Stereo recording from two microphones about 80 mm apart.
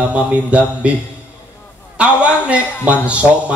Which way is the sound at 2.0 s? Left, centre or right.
Centre.